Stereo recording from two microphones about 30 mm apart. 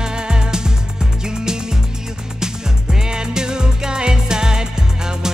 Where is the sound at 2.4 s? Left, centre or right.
Right.